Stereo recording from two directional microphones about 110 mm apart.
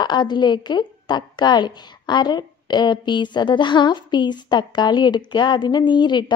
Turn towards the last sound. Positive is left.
turn(degrees=45)  # may be behind; listen again after turning